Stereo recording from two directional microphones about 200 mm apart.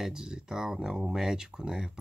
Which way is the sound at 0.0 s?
5° right (ahead or behind).